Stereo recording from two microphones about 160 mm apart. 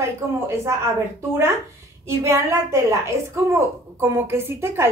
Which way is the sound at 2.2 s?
20° right (ahead or behind).